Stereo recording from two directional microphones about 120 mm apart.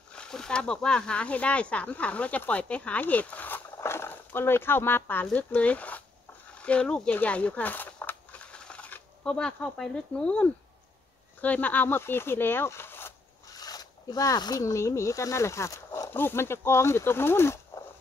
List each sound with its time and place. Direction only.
0.1 s speech: 5° left (ahead or behind)
13.5 s speech: 30° left (ahead or behind)